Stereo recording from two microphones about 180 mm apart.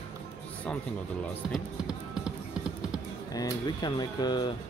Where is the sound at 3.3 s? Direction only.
20° left (ahead or behind).